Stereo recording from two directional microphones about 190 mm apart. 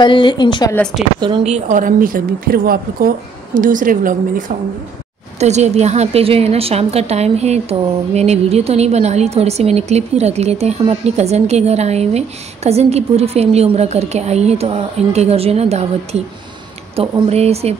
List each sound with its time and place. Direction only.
0.0 s a woman's voice: 25° left (ahead or behind)
1.2 s a woman's voice: 30° right (ahead or behind)